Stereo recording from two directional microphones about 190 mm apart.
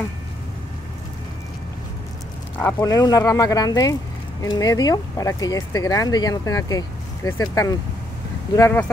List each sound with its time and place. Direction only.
2.6 s speech: 20° left (ahead or behind)